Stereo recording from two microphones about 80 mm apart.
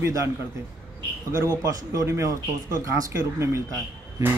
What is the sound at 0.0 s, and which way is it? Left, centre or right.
Speech, right.